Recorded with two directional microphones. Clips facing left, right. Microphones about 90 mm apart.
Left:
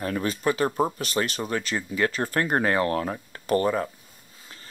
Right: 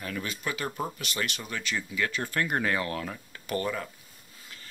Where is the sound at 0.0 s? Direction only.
40° left (ahead or behind).